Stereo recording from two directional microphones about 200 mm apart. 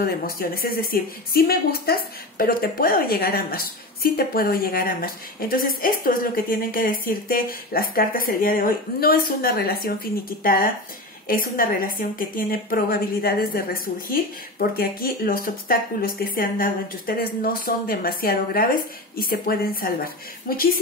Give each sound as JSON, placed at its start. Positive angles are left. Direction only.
{"t": 0.0, "sound": "speech", "side_deg": 45}